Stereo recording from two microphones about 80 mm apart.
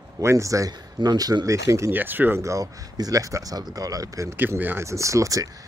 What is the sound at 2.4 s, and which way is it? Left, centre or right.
Speech, right.